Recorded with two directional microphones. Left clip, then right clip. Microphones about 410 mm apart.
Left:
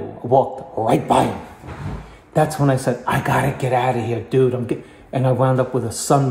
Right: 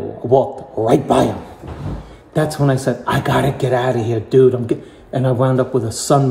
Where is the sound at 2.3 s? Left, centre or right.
Centre.